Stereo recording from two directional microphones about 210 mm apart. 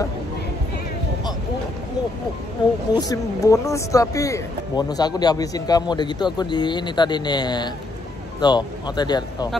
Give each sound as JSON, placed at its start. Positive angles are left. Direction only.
{"t": 2.6, "sound": "speech", "side_deg": 20}